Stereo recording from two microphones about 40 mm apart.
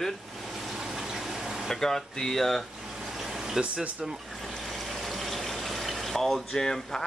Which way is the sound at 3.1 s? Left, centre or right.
Centre.